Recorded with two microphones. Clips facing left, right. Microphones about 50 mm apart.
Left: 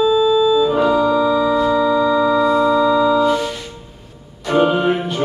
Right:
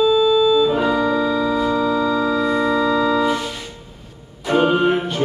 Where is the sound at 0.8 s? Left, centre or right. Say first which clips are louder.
Left 3 dB; right.